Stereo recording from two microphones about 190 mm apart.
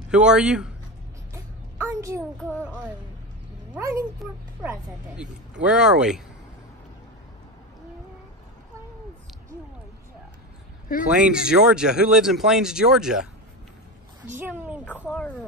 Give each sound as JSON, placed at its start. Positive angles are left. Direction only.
{"t": 0.1, "sound": "speech", "side_deg": -5}
{"t": 1.3, "sound": "a sound", "side_deg": -15}
{"t": 2.4, "sound": "speech", "side_deg": 10}
{"t": 3.7, "sound": "speech", "side_deg": -15}
{"t": 4.6, "sound": "speech", "side_deg": -5}
{"t": 11.1, "sound": "speech", "side_deg": -5}
{"t": 15.0, "sound": "speech", "side_deg": 0}